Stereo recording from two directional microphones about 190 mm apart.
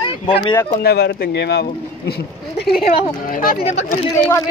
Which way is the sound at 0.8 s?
60° left (ahead or behind).